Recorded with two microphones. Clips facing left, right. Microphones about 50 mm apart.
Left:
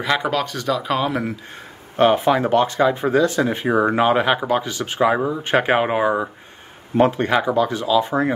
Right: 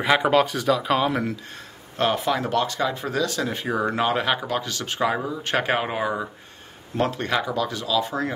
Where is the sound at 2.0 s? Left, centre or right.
Left.